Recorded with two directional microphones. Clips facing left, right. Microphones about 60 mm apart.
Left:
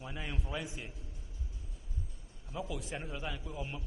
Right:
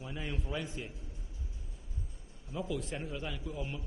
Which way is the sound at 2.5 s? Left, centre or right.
Centre.